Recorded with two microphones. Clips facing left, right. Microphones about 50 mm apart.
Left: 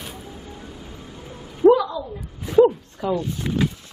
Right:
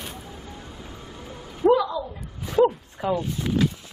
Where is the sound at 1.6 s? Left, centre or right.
Centre.